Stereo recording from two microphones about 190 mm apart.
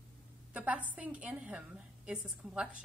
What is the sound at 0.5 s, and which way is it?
A woman's voice, 5° right (ahead or behind).